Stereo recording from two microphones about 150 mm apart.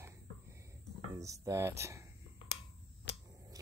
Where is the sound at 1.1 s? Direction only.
20° right (ahead or behind).